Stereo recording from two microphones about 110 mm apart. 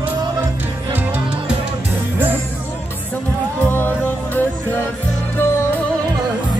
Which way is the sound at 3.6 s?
20° left (ahead or behind).